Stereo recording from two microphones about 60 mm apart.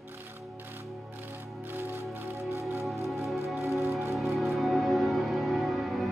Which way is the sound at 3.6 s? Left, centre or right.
Right.